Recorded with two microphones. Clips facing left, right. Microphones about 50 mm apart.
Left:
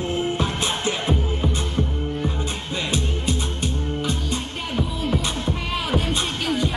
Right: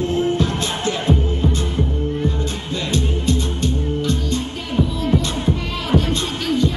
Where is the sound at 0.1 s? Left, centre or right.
Centre.